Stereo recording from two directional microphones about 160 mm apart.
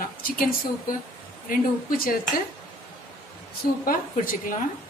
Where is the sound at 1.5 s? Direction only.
65° left (ahead or behind).